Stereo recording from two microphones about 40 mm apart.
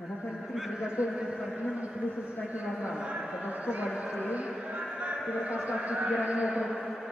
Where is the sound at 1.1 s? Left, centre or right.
Centre.